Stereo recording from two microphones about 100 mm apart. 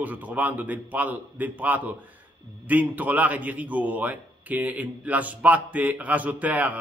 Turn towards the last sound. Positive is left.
turn(degrees=-15)  # may be behind; listen again after turning